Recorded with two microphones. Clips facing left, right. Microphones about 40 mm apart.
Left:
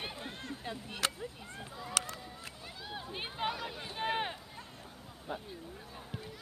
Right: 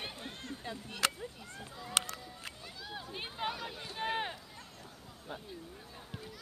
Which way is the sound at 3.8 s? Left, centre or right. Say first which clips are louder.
Left 1 dB; centre.